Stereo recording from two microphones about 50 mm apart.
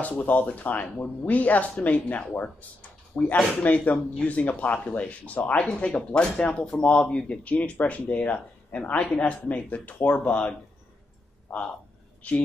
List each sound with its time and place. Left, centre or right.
0.2 s speech: left